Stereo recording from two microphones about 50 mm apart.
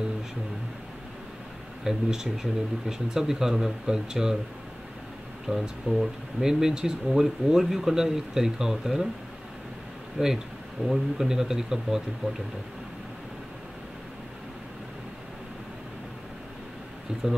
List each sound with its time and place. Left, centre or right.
1.9 s speech: centre
5.5 s speech: centre
6.4 s speech: centre
10.1 s speech: centre